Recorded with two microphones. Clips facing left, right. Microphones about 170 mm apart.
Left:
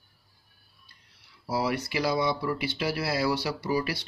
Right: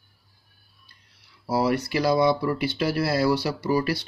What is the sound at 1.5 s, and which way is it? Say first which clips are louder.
Speech: right 5 dB; 45° right (ahead or behind).